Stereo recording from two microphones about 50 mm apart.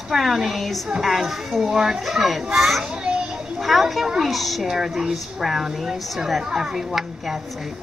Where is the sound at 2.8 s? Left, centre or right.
Centre.